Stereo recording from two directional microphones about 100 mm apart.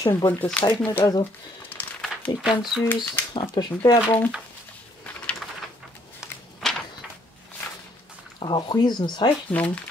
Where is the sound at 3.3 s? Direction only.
45° left (ahead or behind).